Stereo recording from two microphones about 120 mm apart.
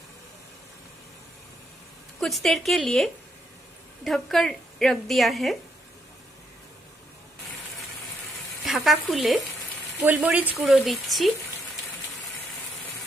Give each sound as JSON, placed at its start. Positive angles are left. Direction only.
{"t": 2.1, "sound": "a woman's voice", "side_deg": 0}
{"t": 8.6, "sound": "frying", "side_deg": 0}
{"t": 9.1, "sound": "a woman's voice", "side_deg": 0}
{"t": 10.0, "sound": "speech", "side_deg": -10}
{"t": 10.5, "sound": "a woman's voice", "side_deg": 0}